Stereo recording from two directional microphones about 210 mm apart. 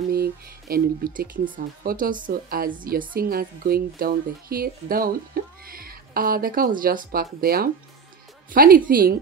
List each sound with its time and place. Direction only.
0.1 s speech: 45° right (ahead or behind)